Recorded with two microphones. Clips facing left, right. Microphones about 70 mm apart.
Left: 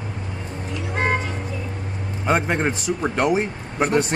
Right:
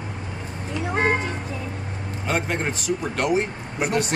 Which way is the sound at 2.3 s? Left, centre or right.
Left.